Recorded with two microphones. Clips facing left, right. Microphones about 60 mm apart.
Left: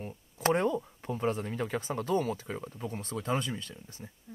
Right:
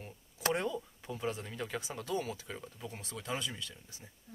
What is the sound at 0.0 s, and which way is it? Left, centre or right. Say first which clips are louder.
Speech: left 6 dB; left.